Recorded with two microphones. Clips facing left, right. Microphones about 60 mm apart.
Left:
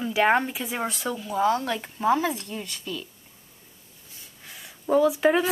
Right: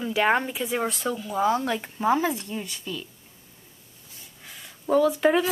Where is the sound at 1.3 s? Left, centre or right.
Centre.